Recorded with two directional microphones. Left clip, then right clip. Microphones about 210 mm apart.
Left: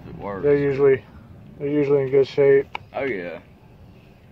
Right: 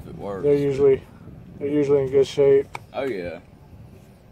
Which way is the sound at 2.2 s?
35° right (ahead or behind).